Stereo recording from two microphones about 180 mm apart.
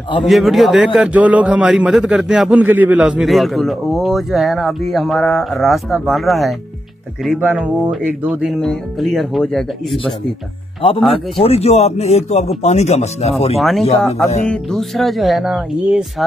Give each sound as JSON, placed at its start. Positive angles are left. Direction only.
{"t": 0.2, "sound": "a man's voice", "side_deg": 0}
{"t": 11.3, "sound": "speech", "side_deg": 35}
{"t": 13.6, "sound": "a man's voice", "side_deg": 0}